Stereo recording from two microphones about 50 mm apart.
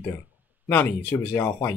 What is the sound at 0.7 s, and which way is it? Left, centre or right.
Speech, left.